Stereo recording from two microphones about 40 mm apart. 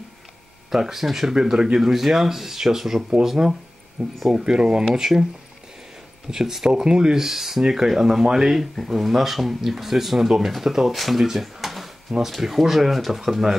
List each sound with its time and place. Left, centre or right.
0.7 s speech: centre
4.9 s speech: centre
6.3 s speech: centre